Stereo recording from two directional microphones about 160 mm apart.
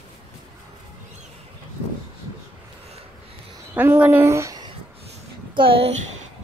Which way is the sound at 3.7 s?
10° right (ahead or behind).